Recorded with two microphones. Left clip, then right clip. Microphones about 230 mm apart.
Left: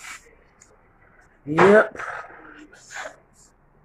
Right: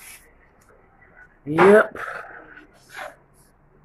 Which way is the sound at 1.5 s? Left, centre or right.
Centre.